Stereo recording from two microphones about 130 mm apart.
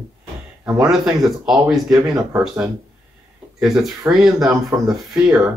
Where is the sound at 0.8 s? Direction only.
5° right (ahead or behind).